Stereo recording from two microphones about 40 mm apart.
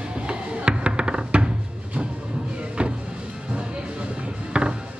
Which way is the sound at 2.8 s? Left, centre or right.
Right.